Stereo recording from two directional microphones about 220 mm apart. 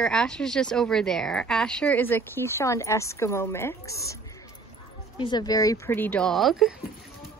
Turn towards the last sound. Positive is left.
turn(degrees=0)  # may be behind; listen again after turning